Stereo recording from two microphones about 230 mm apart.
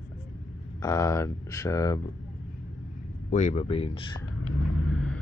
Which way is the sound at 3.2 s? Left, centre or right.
Left.